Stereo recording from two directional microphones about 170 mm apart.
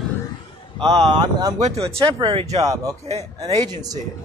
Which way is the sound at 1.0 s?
25° right (ahead or behind).